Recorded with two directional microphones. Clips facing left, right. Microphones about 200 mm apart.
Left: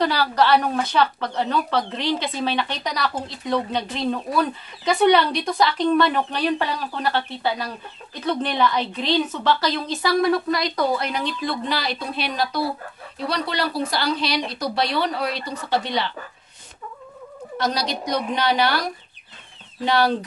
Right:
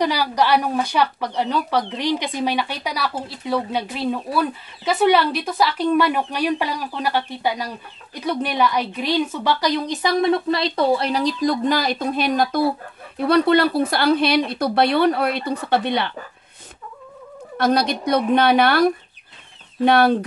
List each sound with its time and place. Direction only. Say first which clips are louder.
0.0 s speech: even; 15° right (ahead or behind); by 16.1 s 55° right (ahead or behind)
17.6 s speech: right 6 dB; 55° right (ahead or behind)